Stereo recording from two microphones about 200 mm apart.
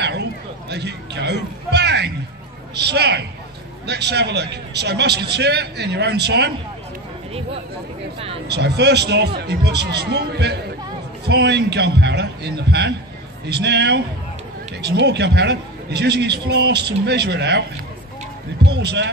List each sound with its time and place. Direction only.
0.0 s a man's voice: 55° right (ahead or behind)
8.5 s a man's voice: 55° right (ahead or behind)
18.7 s a man's voice: 55° right (ahead or behind)